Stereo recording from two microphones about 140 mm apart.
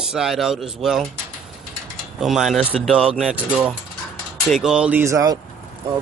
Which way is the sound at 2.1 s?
Centre (ahead or behind).